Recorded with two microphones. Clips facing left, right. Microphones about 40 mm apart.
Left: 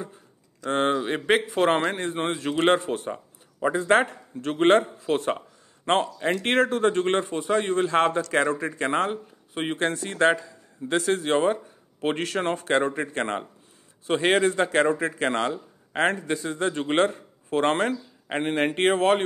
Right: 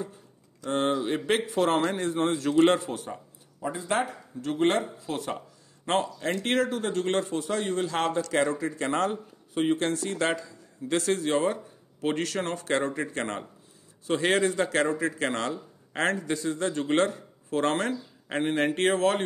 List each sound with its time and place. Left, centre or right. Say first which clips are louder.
0.7 s speech: left 3 dB; left
5.9 s speech: left 4 dB; left
6.4 s speech: left 6 dB; left
11.0 s speech: left 3 dB; centre
11.2 s speech: left 3 dB; left
14.2 s speech: left 3 dB; centre
15.1 s speech: left 4 dB; left